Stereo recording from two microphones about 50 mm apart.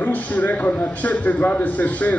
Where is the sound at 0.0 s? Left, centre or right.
Left.